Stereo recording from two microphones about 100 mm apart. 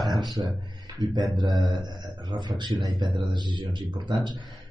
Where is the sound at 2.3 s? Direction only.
50° right (ahead or behind).